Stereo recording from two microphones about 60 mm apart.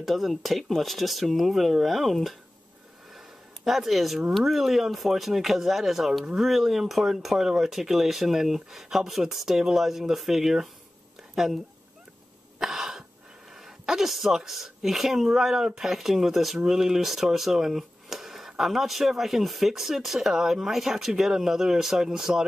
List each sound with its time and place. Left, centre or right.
0.0 s speech: centre
3.6 s speech: centre
12.5 s cough: centre
13.6 s speech: centre